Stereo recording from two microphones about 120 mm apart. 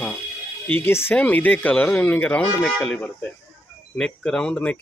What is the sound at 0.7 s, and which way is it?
Speech, 15° left (ahead or behind).